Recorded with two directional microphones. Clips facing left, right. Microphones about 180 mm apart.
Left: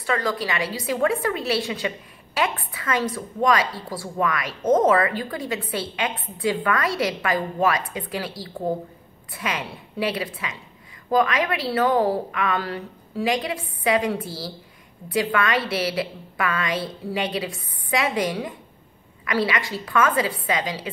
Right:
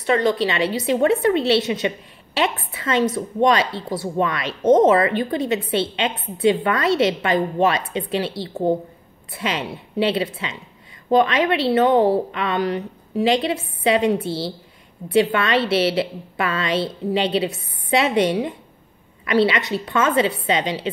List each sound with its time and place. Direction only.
0.0 s a woman's voice: 25° right (ahead or behind)